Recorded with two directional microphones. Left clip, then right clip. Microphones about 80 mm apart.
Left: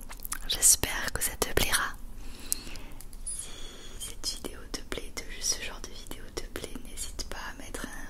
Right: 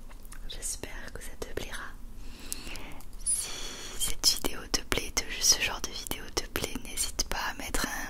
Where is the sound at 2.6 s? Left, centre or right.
Right.